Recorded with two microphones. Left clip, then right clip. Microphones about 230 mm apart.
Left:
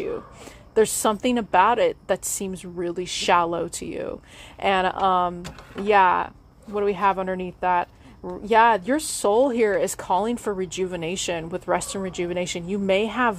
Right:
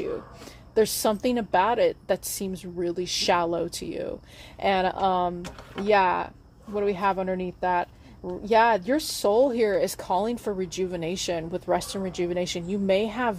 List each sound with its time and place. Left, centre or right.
0.7 s a woman's voice: left